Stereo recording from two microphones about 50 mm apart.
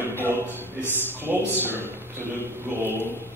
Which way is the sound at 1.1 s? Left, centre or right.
Right.